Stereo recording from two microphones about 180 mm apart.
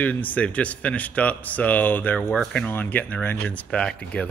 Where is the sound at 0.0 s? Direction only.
10° left (ahead or behind).